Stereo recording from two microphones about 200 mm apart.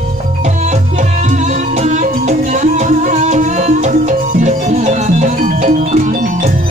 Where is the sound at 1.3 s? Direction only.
35° right (ahead or behind).